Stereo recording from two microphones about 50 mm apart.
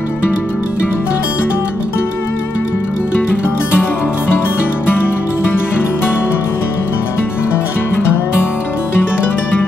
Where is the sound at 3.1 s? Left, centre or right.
Left.